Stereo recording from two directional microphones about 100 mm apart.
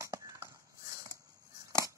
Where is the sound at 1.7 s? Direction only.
30° right (ahead or behind).